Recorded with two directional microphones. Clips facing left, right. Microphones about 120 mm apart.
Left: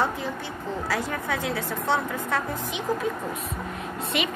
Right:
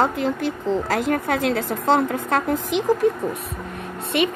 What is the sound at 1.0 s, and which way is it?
A woman's voice, 65° right (ahead or behind).